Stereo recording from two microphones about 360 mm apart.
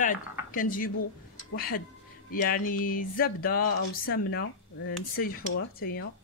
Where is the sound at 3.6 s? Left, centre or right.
Left.